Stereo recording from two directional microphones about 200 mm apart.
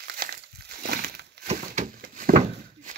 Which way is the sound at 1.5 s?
40° right (ahead or behind).